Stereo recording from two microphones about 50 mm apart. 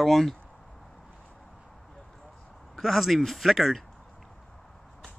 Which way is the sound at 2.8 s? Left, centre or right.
Centre.